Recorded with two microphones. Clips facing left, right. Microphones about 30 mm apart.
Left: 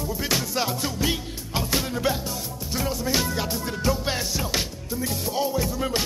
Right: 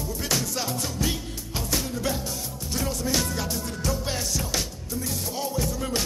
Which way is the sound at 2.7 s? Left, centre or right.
Centre.